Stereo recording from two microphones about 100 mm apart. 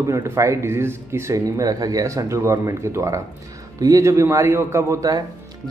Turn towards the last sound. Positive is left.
turn(degrees=-40)  # may be behind; listen again after turning